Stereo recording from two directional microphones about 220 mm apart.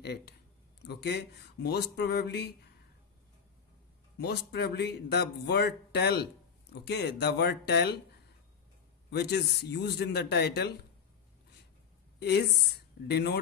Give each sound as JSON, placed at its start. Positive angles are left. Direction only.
{"t": 0.0, "sound": "speech", "side_deg": 50}
{"t": 4.2, "sound": "speech", "side_deg": 50}
{"t": 9.1, "sound": "speech", "side_deg": 50}
{"t": 12.2, "sound": "a woman's voice", "side_deg": 50}